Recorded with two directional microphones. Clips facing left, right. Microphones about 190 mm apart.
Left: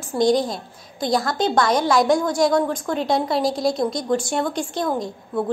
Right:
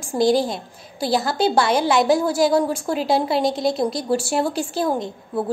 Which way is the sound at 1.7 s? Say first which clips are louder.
Even; 30° right (ahead or behind).